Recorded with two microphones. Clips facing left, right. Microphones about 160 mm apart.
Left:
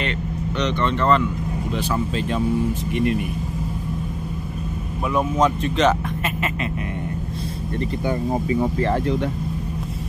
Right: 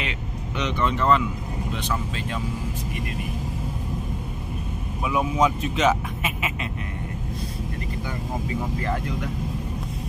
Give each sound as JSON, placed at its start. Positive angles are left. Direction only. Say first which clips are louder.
{"t": 0.6, "sound": "speech", "louder": "left 2 dB", "side_deg": -5}
{"t": 5.1, "sound": "speech", "louder": "left 2 dB", "side_deg": -5}
{"t": 8.7, "sound": "speech", "louder": "left 7 dB", "side_deg": 30}